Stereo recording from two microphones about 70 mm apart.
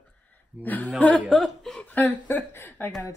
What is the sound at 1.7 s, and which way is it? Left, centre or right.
Speech, left.